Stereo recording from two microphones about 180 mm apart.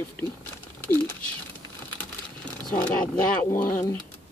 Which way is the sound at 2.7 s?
5° left (ahead or behind).